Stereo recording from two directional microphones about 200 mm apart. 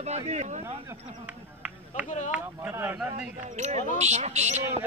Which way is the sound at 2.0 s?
35° left (ahead or behind).